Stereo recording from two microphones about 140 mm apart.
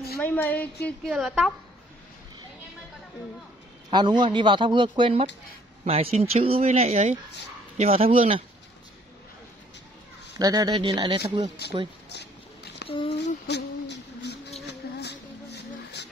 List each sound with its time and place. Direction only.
0.2 s speech: 10° left (ahead or behind)
1.1 s a woman's voice: 5° right (ahead or behind)
3.9 s speech: 35° right (ahead or behind)
10.4 s speech: 25° right (ahead or behind)
12.8 s a sound: 40° left (ahead or behind)
14.8 s a sound: 90° left